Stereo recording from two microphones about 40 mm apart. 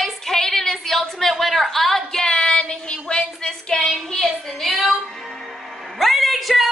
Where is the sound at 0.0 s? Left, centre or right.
Centre.